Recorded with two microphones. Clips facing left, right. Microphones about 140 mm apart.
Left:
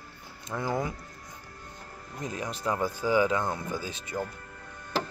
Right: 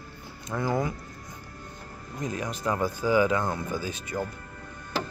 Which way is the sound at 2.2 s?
30° left (ahead or behind).